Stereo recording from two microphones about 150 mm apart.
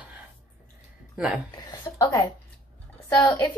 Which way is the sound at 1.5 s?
25° left (ahead or behind).